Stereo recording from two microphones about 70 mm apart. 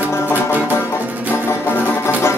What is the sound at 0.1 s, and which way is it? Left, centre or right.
Music, left.